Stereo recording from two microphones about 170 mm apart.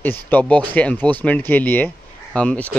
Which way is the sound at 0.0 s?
10° left (ahead or behind).